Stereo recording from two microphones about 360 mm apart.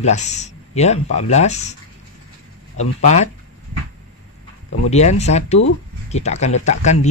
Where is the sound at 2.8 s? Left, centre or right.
Centre.